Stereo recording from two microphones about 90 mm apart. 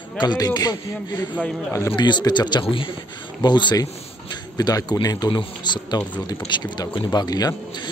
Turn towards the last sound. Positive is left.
turn(degrees=50)  # may be behind; listen again after turning